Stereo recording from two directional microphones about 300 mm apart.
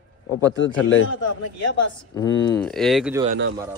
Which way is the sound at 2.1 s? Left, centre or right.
Centre.